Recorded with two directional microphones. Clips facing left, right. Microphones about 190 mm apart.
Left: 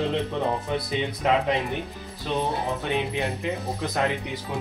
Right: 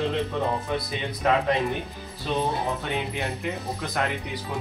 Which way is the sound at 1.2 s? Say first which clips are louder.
Right 1 dB; 20° left (ahead or behind).